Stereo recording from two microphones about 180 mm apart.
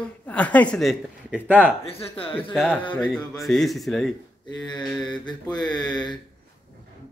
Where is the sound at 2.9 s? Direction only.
5° left (ahead or behind).